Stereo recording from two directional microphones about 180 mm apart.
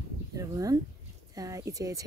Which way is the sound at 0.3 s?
20° right (ahead or behind).